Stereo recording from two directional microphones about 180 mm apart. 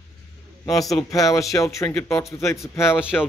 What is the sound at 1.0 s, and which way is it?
Speech, 20° left (ahead or behind).